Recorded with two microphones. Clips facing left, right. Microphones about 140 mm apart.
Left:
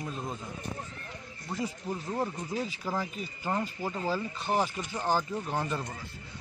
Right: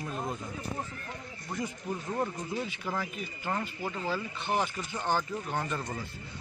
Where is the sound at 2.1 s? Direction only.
10° left (ahead or behind).